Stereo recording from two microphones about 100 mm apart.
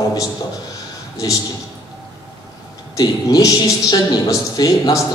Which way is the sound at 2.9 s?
40° left (ahead or behind).